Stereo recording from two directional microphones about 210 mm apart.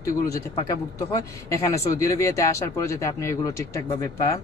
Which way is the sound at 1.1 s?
15° left (ahead or behind).